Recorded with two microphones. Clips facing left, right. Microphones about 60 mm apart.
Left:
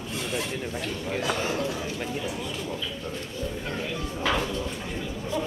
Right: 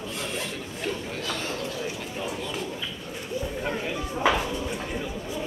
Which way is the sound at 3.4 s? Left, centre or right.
Centre.